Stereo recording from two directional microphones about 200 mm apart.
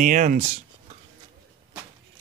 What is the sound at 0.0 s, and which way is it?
Speech, 40° right (ahead or behind).